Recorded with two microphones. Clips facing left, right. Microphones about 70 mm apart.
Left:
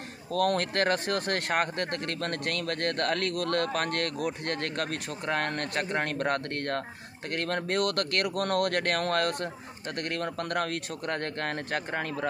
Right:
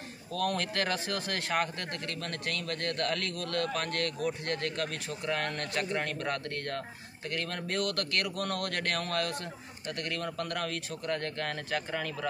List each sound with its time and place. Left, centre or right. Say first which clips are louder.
0.3 s speech: left 5 dB; left